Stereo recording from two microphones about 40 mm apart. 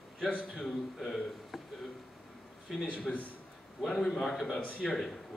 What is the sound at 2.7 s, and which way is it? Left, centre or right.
Speech, centre.